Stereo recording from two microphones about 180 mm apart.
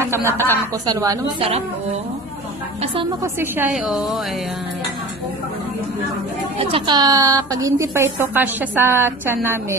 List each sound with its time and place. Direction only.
0.0 s a woman's voice: 15° right (ahead or behind)
3.3 s a woman's voice: 10° right (ahead or behind)
3.7 s speech: centre (ahead or behind)
6.6 s a woman's voice: 25° right (ahead or behind)